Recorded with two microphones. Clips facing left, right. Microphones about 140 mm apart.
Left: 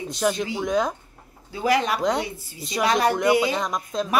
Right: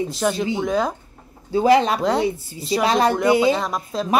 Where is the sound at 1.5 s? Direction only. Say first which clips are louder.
Right 6 dB; 25° right (ahead or behind).